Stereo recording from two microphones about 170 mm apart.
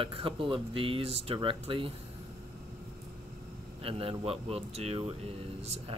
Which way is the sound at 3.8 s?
35° right (ahead or behind).